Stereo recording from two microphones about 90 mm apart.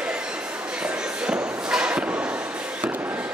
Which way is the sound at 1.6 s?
10° right (ahead or behind).